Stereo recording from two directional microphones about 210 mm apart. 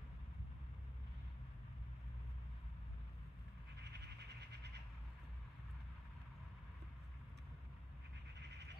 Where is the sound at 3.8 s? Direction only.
55° right (ahead or behind).